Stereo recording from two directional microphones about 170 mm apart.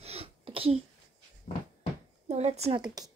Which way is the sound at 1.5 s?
55° left (ahead or behind).